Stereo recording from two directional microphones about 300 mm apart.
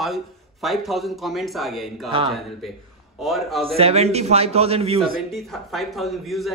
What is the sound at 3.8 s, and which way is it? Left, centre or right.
A man's voice, right.